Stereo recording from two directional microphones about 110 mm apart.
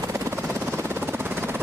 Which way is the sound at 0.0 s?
25° right (ahead or behind).